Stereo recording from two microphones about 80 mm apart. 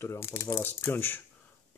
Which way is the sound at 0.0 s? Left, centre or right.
Left.